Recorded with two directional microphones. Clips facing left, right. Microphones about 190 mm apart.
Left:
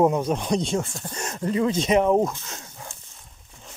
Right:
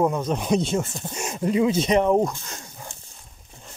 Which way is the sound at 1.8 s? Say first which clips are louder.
Even; centre (ahead or behind).